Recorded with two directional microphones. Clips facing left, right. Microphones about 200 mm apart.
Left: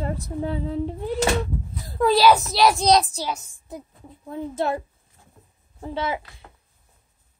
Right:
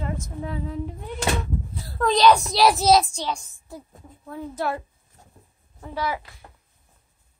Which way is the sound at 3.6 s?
20° left (ahead or behind).